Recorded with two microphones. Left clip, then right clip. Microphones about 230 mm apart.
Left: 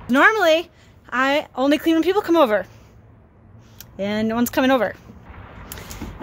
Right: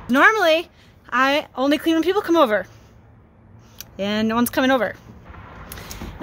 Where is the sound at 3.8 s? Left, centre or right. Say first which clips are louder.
Right 1 dB; centre.